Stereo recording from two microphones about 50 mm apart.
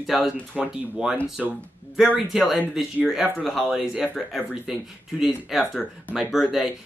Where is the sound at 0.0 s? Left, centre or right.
Centre.